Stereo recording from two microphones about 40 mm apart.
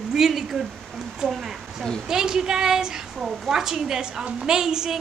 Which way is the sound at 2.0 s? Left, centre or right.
Centre.